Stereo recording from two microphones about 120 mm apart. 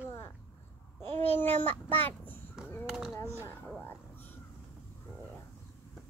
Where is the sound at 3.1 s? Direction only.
25° left (ahead or behind).